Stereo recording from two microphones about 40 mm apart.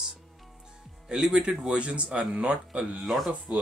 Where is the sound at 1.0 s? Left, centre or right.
Centre.